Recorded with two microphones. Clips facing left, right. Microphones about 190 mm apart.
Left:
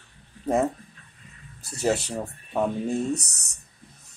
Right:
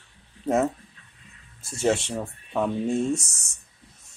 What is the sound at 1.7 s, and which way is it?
Speech, centre (ahead or behind).